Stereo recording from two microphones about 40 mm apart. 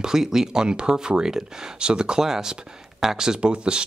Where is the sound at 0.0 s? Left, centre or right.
Centre.